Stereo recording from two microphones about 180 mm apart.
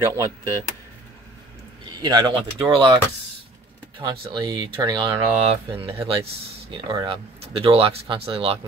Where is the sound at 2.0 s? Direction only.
25° right (ahead or behind).